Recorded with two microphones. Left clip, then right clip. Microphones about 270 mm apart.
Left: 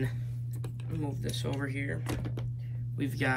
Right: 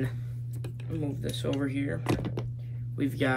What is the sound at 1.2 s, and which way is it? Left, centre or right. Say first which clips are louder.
Speech: right 6 dB; centre.